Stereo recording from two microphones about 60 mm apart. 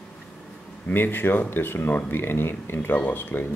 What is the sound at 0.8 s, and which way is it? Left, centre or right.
Speech, left.